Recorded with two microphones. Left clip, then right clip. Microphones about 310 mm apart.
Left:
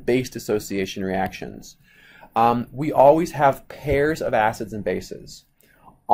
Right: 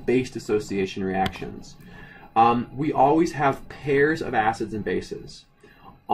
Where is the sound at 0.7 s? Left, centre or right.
Centre.